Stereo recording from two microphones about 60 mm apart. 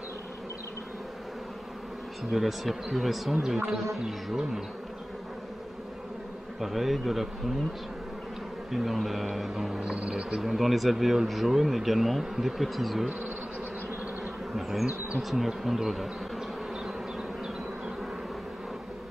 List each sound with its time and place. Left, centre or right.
2.3 s speech: centre
6.6 s speech: centre
8.7 s speech: centre
10.4 s speech: centre
15.1 s speech: centre